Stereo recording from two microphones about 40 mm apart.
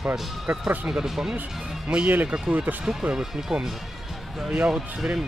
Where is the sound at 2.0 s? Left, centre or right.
Right.